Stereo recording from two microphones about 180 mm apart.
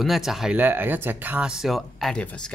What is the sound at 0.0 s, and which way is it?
Speech, centre (ahead or behind).